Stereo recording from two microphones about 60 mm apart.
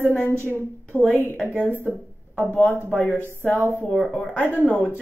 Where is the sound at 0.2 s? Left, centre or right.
Right.